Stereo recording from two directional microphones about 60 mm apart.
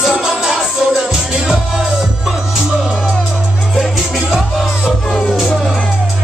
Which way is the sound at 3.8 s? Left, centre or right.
Centre.